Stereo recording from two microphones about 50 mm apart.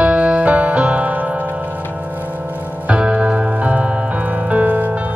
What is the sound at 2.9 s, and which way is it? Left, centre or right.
Music, right.